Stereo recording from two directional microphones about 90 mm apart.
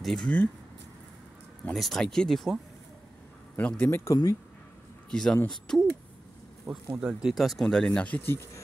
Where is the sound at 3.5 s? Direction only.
20° left (ahead or behind).